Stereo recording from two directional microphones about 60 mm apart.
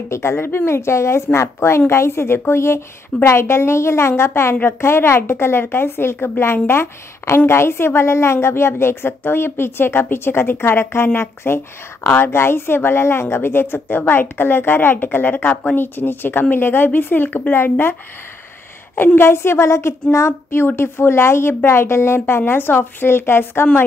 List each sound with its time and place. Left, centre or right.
0.1 s a woman's voice: left
19.1 s a woman's voice: left